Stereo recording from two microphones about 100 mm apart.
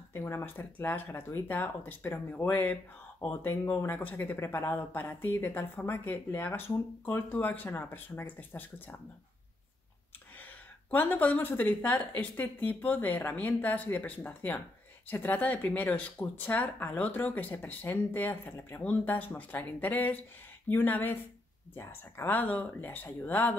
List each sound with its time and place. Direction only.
0.1 s speech: 25° left (ahead or behind)
10.9 s speech: 20° left (ahead or behind)